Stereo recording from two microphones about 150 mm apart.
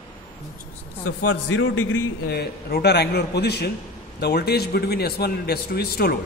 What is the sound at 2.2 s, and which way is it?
A man's voice, 90° left.